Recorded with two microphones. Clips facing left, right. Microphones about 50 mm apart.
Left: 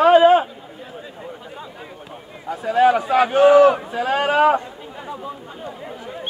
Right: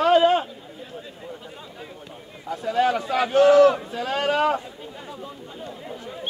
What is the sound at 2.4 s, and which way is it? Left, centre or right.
Speech, left.